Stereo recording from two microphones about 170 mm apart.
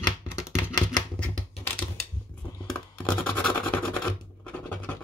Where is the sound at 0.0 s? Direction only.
25° left (ahead or behind).